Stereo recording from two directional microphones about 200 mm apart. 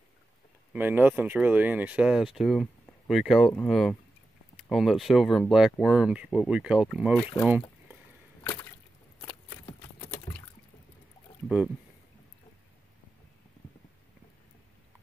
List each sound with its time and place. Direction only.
0.7 s speech: 10° right (ahead or behind)
8.5 s a sound: 10° left (ahead or behind)
11.4 s speech: 5° right (ahead or behind)